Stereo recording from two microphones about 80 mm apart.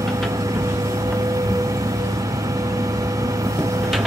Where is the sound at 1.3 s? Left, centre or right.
Right.